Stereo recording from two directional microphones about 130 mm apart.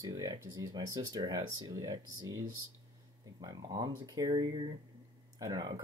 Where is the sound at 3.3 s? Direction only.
30° right (ahead or behind).